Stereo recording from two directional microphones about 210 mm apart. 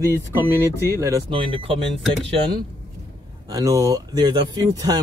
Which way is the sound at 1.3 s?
25° right (ahead or behind).